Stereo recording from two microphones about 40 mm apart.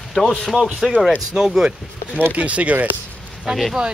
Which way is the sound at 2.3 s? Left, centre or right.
Right.